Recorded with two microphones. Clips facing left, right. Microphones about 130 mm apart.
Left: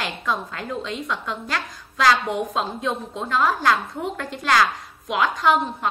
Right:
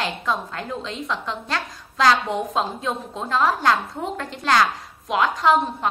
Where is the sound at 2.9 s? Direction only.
30° right (ahead or behind).